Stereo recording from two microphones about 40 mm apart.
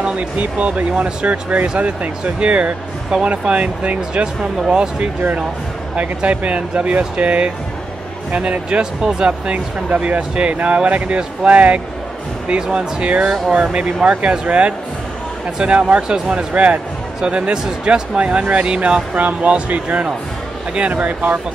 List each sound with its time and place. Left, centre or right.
0.0 s speech: right